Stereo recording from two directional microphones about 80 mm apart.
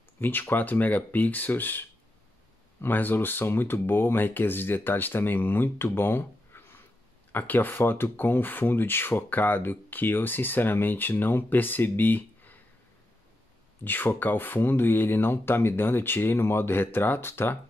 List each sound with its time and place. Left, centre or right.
0.2 s speech: left
13.8 s speech: left